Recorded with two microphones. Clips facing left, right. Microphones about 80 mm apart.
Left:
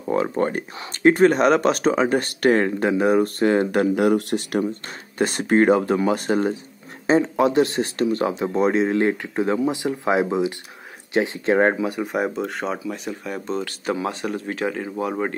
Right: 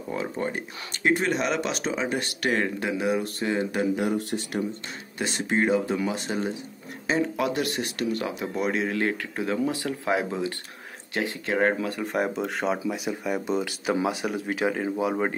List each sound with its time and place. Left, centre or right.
0.1 s speech: left
4.8 s speech: left
7.1 s speech: left
11.7 s speech: centre
12.1 s speech: centre
12.7 s speech: centre